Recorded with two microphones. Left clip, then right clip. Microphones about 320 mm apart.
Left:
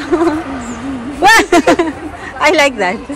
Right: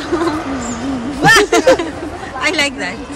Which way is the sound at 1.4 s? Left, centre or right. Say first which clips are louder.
Left 1 dB; centre.